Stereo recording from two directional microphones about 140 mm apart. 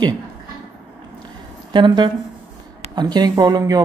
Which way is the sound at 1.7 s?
35° right (ahead or behind).